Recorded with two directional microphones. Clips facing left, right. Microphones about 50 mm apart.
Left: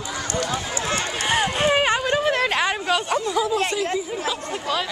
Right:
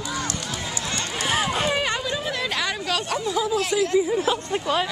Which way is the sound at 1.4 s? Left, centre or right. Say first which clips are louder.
Left 4 dB; left.